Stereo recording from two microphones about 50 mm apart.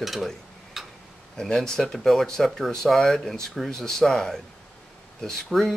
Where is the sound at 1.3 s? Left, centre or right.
Centre.